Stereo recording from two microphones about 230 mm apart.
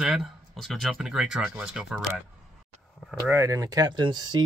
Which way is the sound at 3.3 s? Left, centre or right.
Centre.